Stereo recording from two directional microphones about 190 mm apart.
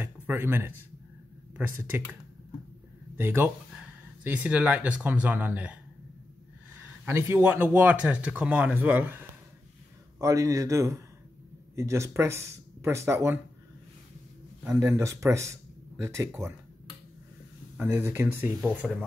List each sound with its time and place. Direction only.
0.0 s a man's voice: 10° right (ahead or behind)
1.8 s speech: 10° right (ahead or behind)
3.2 s speech: 10° right (ahead or behind)
7.1 s speech: 15° right (ahead or behind)
14.6 s speech: 15° right (ahead or behind)
17.7 s speech: 10° right (ahead or behind)